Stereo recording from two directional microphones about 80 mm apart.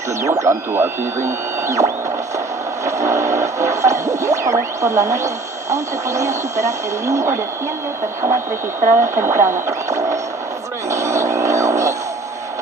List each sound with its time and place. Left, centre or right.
0.2 s speech: right
8.8 s speech: right
10.9 s music: right